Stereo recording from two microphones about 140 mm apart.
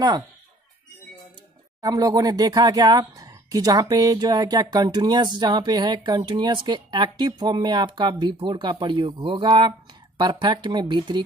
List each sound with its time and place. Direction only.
1.8 s speech: 25° right (ahead or behind)